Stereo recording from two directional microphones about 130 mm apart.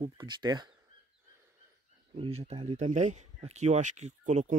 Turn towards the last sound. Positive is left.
turn(degrees=-65)  # may be behind; listen again after turning